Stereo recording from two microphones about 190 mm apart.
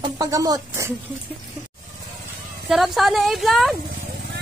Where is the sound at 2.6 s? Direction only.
Centre (ahead or behind).